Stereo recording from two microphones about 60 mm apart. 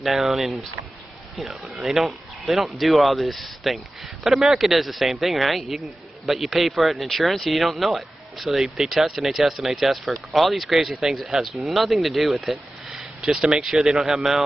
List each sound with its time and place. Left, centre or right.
0.0 s speech: centre